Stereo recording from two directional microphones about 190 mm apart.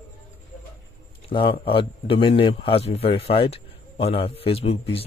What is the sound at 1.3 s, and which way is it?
A man's voice, 25° left (ahead or behind).